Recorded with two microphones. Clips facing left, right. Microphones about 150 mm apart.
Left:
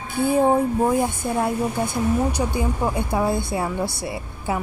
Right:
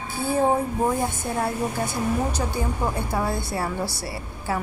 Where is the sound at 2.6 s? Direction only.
15° left (ahead or behind).